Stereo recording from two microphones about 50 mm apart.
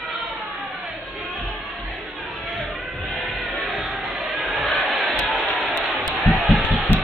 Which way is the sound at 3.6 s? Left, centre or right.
Centre.